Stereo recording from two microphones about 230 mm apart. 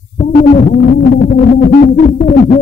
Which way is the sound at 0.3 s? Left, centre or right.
Left.